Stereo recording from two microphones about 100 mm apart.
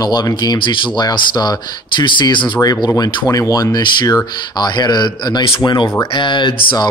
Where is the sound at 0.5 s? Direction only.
55° left (ahead or behind).